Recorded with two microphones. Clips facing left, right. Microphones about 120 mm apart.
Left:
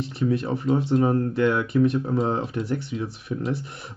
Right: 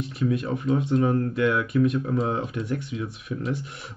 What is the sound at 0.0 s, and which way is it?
Speech, 30° left (ahead or behind).